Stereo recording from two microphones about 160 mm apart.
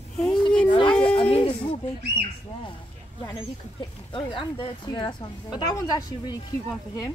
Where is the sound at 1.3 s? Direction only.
35° left (ahead or behind).